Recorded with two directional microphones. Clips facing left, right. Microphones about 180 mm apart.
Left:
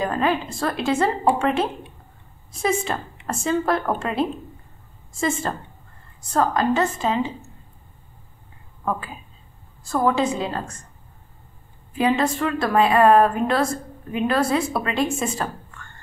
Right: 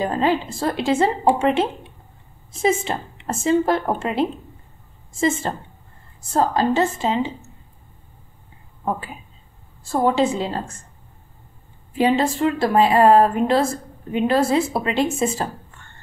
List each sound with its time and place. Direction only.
0.0 s a woman's voice: 30° right (ahead or behind)
9.8 s speech: 30° right (ahead or behind)
11.9 s a woman's voice: 25° right (ahead or behind)